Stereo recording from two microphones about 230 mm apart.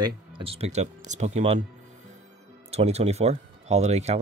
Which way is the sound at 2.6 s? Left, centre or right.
Right.